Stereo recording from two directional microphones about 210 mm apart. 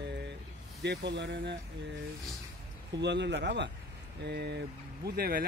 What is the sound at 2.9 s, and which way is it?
Speech, 55° right (ahead or behind).